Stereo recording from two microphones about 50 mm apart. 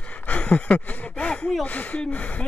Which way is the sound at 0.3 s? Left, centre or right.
Left.